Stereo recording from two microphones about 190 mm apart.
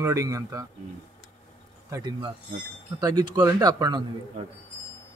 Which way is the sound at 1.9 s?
20° right (ahead or behind).